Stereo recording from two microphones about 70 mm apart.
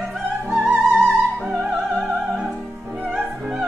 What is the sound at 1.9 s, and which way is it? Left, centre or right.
Music, centre.